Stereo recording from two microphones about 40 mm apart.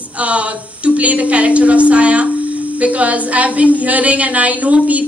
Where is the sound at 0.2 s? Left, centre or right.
Right.